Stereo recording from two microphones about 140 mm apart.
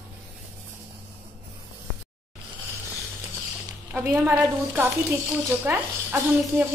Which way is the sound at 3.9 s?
15° right (ahead or behind).